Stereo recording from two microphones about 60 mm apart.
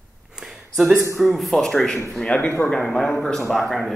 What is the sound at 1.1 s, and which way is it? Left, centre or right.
Speech, centre.